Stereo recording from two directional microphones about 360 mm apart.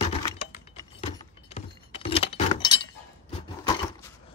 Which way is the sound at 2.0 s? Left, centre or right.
Centre.